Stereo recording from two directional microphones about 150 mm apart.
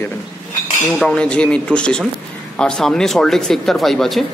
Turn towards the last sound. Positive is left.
turn(degrees=0)  # may be behind; listen again after turning